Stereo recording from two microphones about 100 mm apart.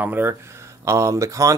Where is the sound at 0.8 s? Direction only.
30° right (ahead or behind).